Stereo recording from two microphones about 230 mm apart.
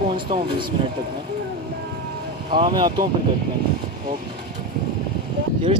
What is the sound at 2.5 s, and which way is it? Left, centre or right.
Speech, centre.